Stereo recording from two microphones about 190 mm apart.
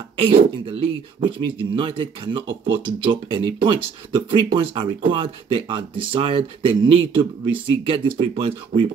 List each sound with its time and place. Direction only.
0.2 s speech: 30° right (ahead or behind)